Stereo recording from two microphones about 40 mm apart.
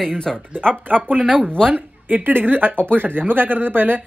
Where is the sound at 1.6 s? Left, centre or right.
Right.